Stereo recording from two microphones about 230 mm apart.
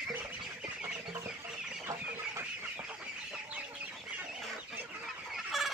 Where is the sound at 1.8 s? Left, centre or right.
Centre.